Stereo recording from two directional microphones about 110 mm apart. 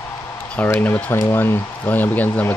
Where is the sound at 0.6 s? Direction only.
15° left (ahead or behind).